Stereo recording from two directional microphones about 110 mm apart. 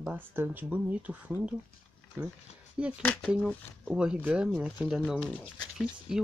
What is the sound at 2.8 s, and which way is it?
Speech, 10° right (ahead or behind).